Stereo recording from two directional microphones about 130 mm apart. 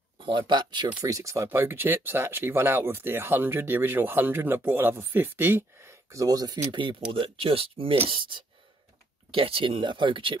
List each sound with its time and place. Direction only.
0.2 s speech: 40° right (ahead or behind)